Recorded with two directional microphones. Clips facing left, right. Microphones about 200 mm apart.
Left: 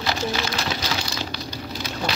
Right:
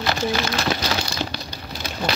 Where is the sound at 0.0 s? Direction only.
55° right (ahead or behind).